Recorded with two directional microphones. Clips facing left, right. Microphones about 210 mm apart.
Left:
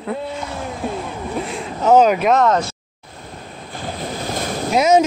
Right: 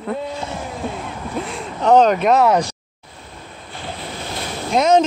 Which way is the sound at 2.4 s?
15° right (ahead or behind).